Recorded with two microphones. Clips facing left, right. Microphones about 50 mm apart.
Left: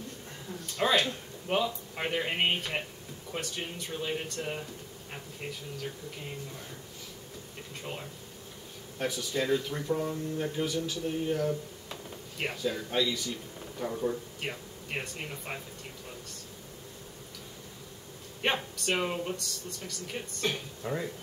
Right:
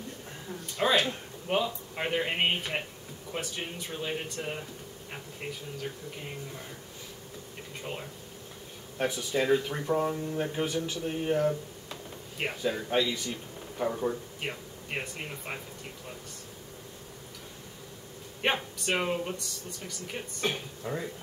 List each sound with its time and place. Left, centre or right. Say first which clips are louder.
0.5 s a sound: right 1 dB; centre
2.0 s speech: right 1 dB; centre
7.8 s speech: right 2 dB; centre
8.9 s speech: right 3 dB; right
12.6 s speech: right 2 dB; right
14.4 s speech: right 1 dB; centre
18.4 s speech: right 1 dB; centre
20.8 s speech: left 1 dB; centre